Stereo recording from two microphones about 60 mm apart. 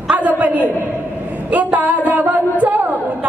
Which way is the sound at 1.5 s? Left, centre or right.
Right.